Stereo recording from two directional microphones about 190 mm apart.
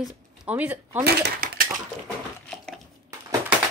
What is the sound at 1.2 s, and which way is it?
Coin, 55° right (ahead or behind).